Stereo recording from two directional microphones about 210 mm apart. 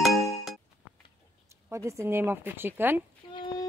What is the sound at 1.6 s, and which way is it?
Speech, 15° right (ahead or behind).